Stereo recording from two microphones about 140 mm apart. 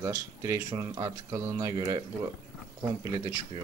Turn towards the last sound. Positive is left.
turn(degrees=-25)  # may be behind; listen again after turning